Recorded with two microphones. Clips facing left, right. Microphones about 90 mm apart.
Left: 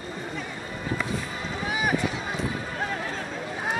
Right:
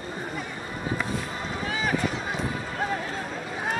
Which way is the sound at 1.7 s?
10° left (ahead or behind).